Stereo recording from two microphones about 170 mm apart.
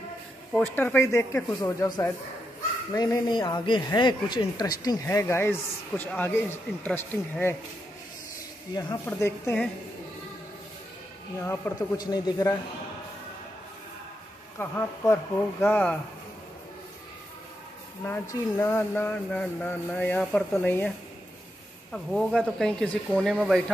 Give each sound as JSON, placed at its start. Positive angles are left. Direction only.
{"t": 0.5, "sound": "speech", "side_deg": 5}
{"t": 8.7, "sound": "speech", "side_deg": 15}
{"t": 11.4, "sound": "speech", "side_deg": 15}
{"t": 14.6, "sound": "speech", "side_deg": 15}
{"t": 18.0, "sound": "speech", "side_deg": 15}
{"t": 21.9, "sound": "speech", "side_deg": 0}